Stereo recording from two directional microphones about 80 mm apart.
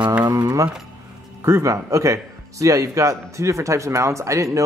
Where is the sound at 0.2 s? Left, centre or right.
Right.